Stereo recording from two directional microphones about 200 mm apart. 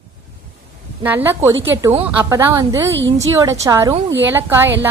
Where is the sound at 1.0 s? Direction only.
10° right (ahead or behind).